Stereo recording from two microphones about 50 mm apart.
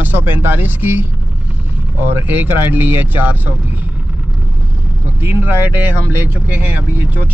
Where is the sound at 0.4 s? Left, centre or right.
Right.